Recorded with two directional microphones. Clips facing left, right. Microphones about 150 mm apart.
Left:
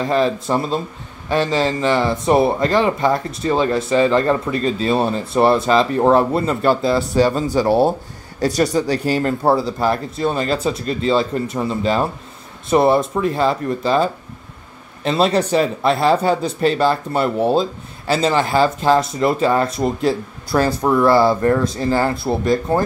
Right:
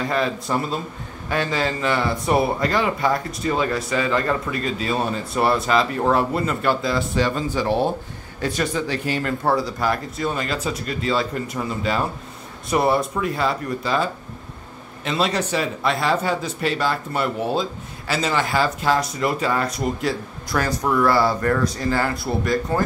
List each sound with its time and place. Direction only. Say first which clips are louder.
0.0 s speech: left 5 dB; 25° left (ahead or behind)
15.0 s speech: left 6 dB; 30° left (ahead or behind)